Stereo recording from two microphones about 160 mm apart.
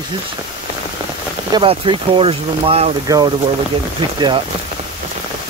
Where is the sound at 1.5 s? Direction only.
30° right (ahead or behind).